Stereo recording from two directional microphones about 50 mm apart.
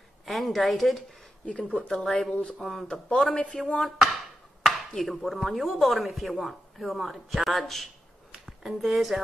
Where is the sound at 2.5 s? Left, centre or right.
Centre.